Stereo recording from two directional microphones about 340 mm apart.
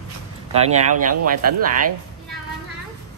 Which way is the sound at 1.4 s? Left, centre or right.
Right.